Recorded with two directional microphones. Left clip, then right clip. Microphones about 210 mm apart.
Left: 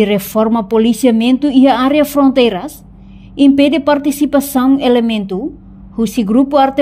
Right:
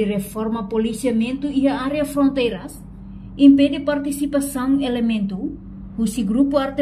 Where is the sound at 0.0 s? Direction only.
45° left (ahead or behind).